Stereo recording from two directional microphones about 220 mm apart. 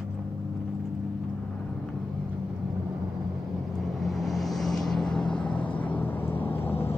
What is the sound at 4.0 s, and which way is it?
Vehicle, centre (ahead or behind).